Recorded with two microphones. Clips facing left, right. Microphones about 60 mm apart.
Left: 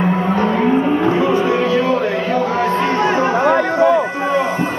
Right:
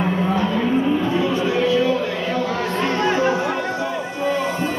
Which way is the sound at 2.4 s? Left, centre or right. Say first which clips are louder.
Left 5 dB; left.